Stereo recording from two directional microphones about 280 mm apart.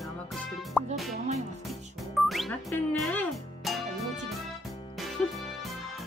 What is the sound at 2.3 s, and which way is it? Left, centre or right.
Music, centre.